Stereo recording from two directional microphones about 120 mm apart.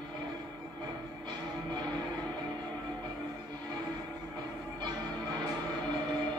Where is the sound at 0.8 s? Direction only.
35° right (ahead or behind).